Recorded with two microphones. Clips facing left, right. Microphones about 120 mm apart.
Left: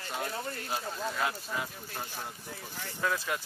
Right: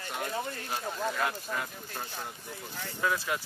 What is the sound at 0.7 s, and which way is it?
Speech, centre (ahead or behind).